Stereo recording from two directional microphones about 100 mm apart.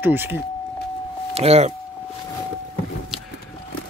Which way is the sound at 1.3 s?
90° right.